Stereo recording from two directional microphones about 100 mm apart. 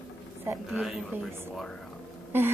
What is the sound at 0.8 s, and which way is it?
Speech, centre (ahead or behind).